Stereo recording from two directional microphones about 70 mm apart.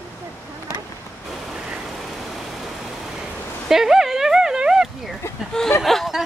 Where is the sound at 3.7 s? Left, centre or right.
Centre.